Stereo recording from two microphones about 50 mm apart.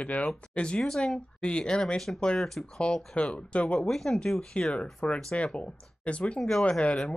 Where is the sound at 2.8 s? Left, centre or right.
Centre.